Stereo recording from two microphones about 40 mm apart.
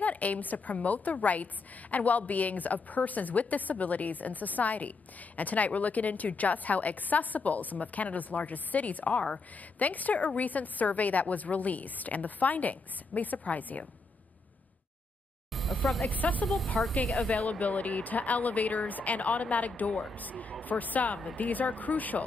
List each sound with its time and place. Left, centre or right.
0.0 s a woman's voice: left
15.5 s speech: centre
16.1 s a woman's voice: left
16.8 s speech: centre
17.3 s a woman's voice: left